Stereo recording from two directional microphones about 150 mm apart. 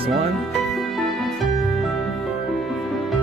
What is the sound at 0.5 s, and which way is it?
Music, centre (ahead or behind).